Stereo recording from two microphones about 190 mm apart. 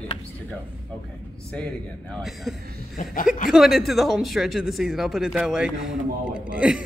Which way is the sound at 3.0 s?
40° left (ahead or behind).